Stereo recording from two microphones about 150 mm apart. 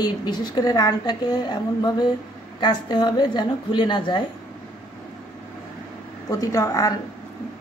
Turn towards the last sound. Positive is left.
turn(degrees=20)  # may be behind; listen again after turning